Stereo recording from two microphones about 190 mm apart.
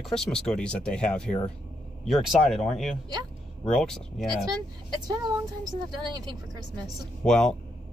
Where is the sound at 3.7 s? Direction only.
Centre (ahead or behind).